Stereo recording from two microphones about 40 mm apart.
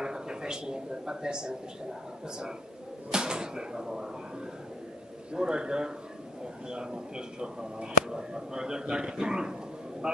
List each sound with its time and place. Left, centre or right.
0.0 s a sound: centre
3.1 s speech: centre
5.3 s speech: right